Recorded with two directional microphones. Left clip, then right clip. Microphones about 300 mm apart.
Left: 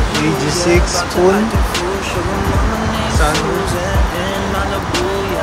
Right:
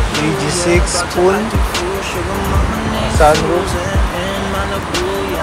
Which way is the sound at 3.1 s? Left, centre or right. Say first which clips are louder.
Right 8 dB; centre.